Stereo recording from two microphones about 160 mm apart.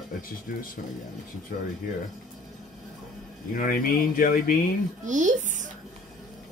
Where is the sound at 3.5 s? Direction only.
60° left (ahead or behind).